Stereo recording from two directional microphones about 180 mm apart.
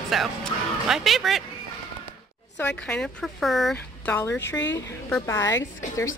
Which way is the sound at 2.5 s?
5° left (ahead or behind).